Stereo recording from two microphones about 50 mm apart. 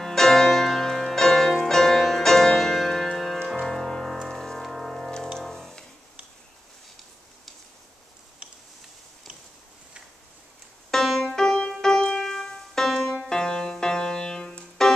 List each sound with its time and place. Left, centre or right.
0.0 s music: centre
10.9 s music: centre
11.4 s music: centre